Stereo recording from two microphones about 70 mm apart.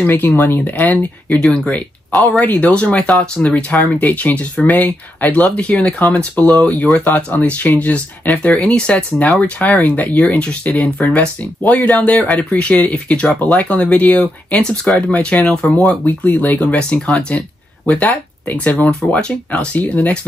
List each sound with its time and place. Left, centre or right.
0.0 s speech: left
0.7 s speech: left
15.6 s speech: centre
16.1 s speech: left